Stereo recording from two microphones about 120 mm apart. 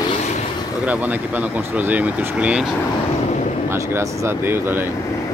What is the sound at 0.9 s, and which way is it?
Speech, 15° right (ahead or behind).